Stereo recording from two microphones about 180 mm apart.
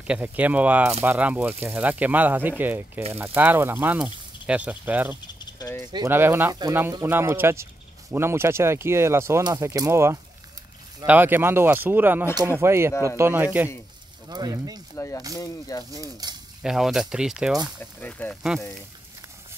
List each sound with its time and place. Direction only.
0.0 s speech: 5° right (ahead or behind)
5.4 s a sound: 20° left (ahead or behind)
6.0 s speech: 10° right (ahead or behind)
14.3 s speech: 20° right (ahead or behind)
15.0 s speech: 15° left (ahead or behind)
15.9 s speech: 20° right (ahead or behind)
16.6 s speech: centre (ahead or behind)
17.7 s speech: 10° left (ahead or behind)